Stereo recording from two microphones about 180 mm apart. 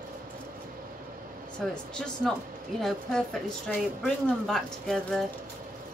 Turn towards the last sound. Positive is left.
turn(degrees=5)  # may be behind; listen again after turning